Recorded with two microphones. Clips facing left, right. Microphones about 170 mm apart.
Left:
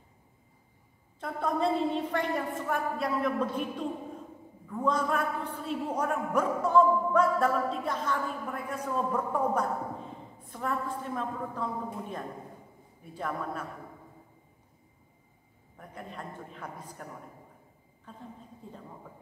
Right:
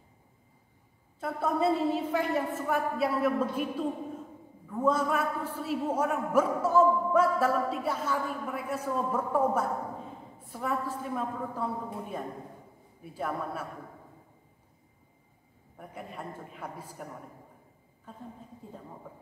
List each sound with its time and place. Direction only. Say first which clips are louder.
1.2 s a man's voice: right 1 dB; 5° right (ahead or behind)
4.8 s a man's voice: right 2 dB; 5° right (ahead or behind)
15.8 s a woman's voice: right 1 dB; 5° right (ahead or behind)